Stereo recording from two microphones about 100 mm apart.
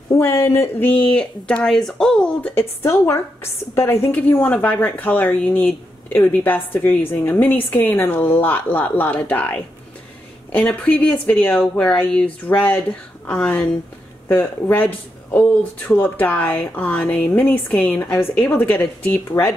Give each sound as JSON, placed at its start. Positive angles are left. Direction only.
{"t": 0.1, "sound": "a woman's voice", "side_deg": 25}